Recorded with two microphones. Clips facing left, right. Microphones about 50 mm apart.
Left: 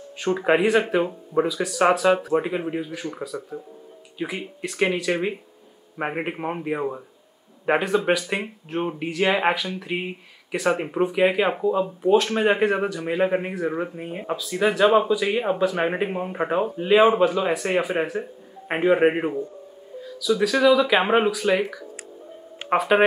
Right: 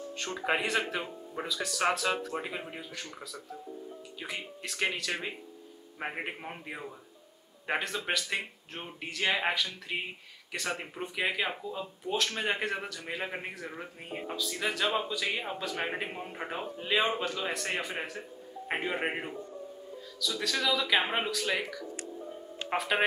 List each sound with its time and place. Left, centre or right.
0.2 s speech: centre
4.2 s speech: centre
5.9 s speech: left
7.6 s speech: centre
10.8 s speech: left
13.7 s speech: left
13.9 s speech: centre
14.3 s speech: centre
16.9 s speech: centre; by 19.3 s left
20.4 s speech: centre